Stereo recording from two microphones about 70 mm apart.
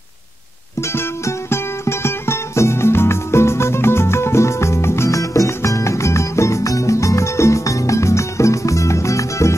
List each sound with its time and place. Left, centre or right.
0.7 s music: left